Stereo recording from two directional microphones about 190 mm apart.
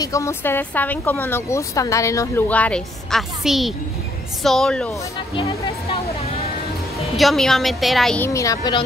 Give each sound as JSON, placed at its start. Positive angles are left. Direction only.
{"t": 0.0, "sound": "a woman's voice", "side_deg": 15}
{"t": 5.3, "sound": "music", "side_deg": 30}
{"t": 7.2, "sound": "a woman's voice", "side_deg": 0}
{"t": 8.3, "sound": "speech", "side_deg": 15}